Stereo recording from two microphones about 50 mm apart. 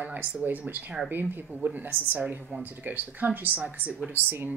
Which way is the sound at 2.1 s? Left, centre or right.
Right.